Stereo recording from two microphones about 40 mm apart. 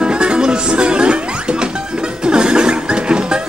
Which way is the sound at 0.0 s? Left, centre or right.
Right.